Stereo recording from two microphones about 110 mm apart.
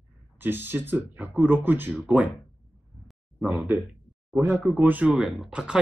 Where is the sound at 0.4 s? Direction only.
15° right (ahead or behind).